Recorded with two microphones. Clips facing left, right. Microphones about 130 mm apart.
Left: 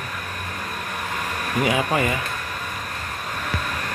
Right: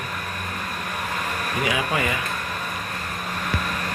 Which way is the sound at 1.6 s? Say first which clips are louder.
Left 3 dB; 40° left (ahead or behind).